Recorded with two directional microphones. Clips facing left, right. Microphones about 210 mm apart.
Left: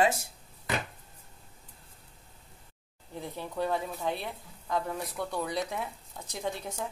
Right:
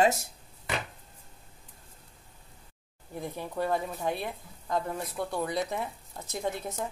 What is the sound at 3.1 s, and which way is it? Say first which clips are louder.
Speech: right 2 dB; 15° right (ahead or behind).